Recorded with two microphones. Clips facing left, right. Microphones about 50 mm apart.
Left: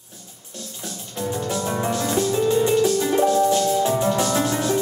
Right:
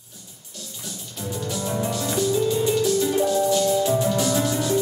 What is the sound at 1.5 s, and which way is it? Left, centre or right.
Music, left.